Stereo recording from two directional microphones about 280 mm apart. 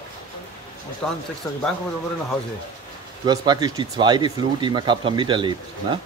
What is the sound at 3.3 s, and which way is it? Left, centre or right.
A man's voice, centre.